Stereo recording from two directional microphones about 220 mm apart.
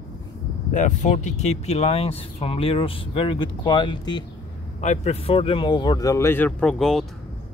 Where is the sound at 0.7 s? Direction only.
35° left (ahead or behind); by 7.1 s centre (ahead or behind).